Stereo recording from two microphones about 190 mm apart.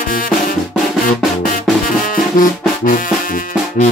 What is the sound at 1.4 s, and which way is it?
Music, 45° left (ahead or behind).